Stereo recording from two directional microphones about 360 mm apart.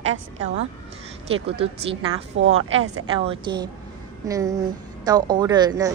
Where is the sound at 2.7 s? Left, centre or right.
Right.